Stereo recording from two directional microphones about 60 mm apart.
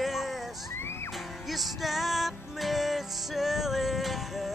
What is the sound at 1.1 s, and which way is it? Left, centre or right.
Music, centre.